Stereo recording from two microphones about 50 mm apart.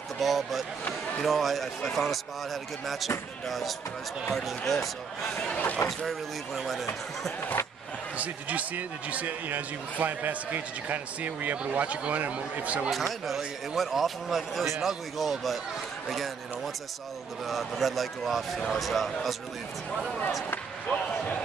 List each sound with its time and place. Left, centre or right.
0.2 s speech: centre
5.6 s speech: left
5.9 s speech: centre
8.2 s speech: right
12.9 s speech: centre
17.5 s speech: centre